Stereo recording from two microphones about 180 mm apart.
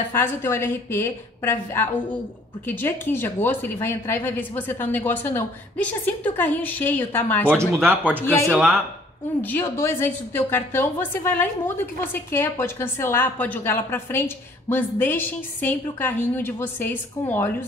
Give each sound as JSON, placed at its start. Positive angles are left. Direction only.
{"t": 0.1, "sound": "a woman's voice", "side_deg": 15}
{"t": 7.9, "sound": "speech", "side_deg": -10}
{"t": 8.5, "sound": "a woman's voice", "side_deg": 0}